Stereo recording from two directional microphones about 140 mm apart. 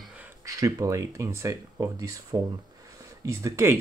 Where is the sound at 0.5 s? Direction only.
25° right (ahead or behind).